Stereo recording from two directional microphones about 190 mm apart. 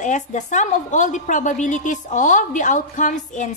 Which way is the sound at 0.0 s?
40° left (ahead or behind).